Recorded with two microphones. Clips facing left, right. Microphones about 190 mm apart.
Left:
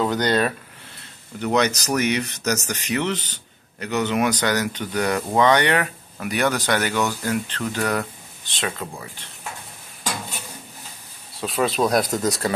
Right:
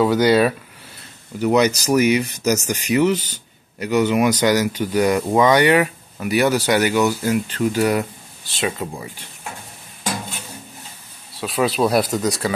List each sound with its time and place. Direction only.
0.0 s speech: 5° right (ahead or behind)
11.3 s speech: centre (ahead or behind)